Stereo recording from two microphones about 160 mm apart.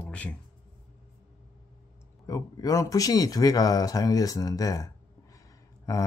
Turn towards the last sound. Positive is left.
turn(degrees=20)  # may be behind; listen again after turning